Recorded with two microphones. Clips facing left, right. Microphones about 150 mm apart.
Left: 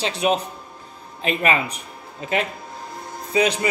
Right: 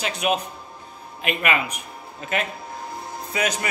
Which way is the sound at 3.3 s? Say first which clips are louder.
Left 6 dB; 25° left (ahead or behind).